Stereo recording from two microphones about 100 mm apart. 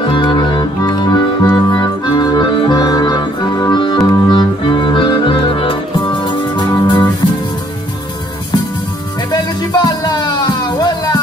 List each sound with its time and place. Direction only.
0.0 s music: 50° left (ahead or behind)
9.3 s music: 45° left (ahead or behind)